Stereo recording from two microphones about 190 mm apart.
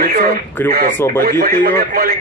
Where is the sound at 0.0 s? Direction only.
50° right (ahead or behind).